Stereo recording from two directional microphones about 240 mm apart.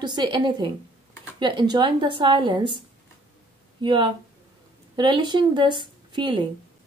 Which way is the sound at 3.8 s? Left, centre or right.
Centre.